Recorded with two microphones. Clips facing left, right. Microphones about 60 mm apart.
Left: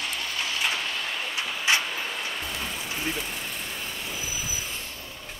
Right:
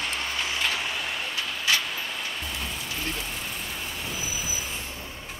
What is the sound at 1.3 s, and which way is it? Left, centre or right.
Vehicle, left.